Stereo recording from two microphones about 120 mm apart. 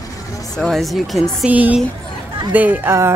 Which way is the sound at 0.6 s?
Centre (ahead or behind).